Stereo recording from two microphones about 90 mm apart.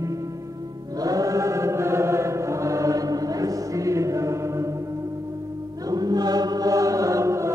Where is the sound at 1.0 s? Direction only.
40° right (ahead or behind).